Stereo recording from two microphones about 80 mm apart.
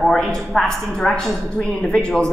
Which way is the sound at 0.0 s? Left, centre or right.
Centre.